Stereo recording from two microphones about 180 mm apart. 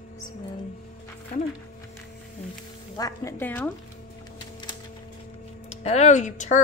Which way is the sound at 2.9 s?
20° left (ahead or behind).